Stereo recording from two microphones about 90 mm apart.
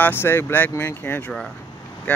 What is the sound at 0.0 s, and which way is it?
Speech, 25° left (ahead or behind).